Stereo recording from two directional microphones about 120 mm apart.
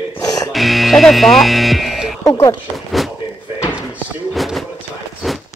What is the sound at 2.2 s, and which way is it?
Speech, 30° left (ahead or behind).